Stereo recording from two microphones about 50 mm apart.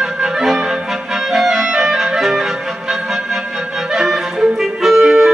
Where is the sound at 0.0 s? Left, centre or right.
Centre.